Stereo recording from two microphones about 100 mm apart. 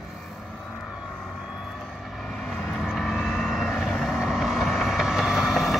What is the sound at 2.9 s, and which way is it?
Vehicle, centre (ahead or behind).